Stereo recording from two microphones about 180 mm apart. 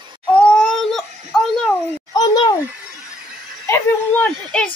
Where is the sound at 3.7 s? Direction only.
10° left (ahead or behind).